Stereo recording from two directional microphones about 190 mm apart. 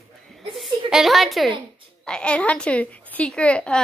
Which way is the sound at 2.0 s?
5° left (ahead or behind).